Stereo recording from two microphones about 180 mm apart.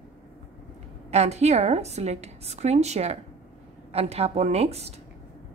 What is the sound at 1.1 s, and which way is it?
A woman's voice, 35° right (ahead or behind).